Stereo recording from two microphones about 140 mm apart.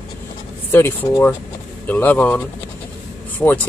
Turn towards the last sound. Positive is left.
turn(degrees=10)  # may be behind; listen again after turning